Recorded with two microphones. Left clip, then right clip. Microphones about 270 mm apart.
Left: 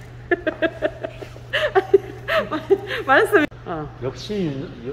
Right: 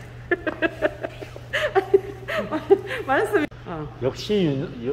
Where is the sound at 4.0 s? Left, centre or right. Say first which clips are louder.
Right 7 dB; right.